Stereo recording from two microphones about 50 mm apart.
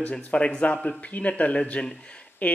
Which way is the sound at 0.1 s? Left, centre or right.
Centre.